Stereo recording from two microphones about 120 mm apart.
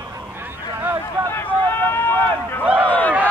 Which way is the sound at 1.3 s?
20° left (ahead or behind).